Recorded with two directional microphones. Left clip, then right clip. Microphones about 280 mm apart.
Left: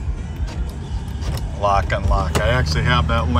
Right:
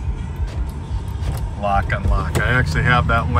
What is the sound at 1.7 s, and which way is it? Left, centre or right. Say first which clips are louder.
Speech: left 1 dB; centre.